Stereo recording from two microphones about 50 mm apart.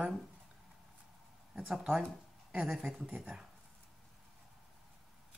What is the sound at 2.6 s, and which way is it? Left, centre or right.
Speech, centre.